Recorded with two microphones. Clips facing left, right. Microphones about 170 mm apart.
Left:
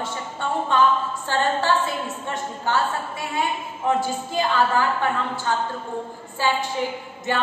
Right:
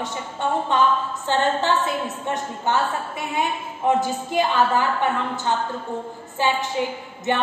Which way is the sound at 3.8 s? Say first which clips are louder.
Right 2 dB; 20° right (ahead or behind).